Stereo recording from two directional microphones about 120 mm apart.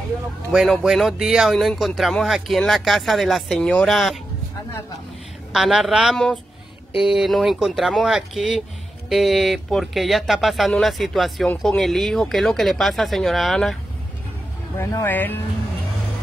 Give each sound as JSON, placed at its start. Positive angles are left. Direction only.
{"t": 0.5, "sound": "speech", "side_deg": -5}
{"t": 5.5, "sound": "speech", "side_deg": -5}
{"t": 14.8, "sound": "speech", "side_deg": 25}
{"t": 15.0, "sound": "speech", "side_deg": 15}